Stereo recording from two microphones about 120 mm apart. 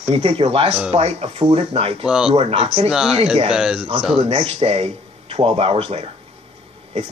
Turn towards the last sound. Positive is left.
turn(degrees=-65)  # may be behind; listen again after turning